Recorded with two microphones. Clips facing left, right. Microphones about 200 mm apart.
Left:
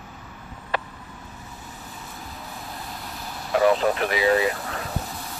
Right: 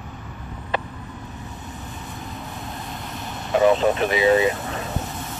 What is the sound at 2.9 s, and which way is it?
Vehicle, centre (ahead or behind).